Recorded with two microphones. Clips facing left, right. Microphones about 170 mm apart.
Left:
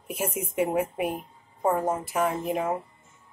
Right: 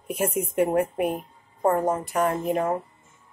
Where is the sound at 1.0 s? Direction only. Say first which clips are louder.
Right 3 dB; 50° right (ahead or behind).